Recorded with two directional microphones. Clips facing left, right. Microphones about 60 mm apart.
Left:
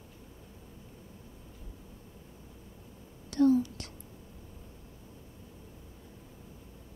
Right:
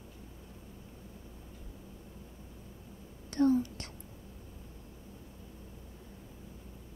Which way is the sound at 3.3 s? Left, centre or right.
Right.